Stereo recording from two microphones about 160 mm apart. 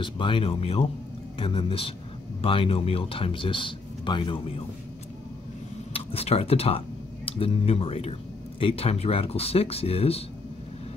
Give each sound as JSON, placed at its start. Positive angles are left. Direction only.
{"t": 0.0, "sound": "speech", "side_deg": 30}
{"t": 5.9, "sound": "speech", "side_deg": 40}